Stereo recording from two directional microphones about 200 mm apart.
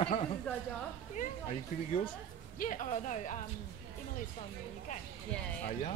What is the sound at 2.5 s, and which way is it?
Speech, 40° left (ahead or behind).